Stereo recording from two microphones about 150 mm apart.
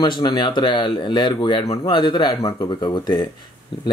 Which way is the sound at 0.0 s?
30° left (ahead or behind).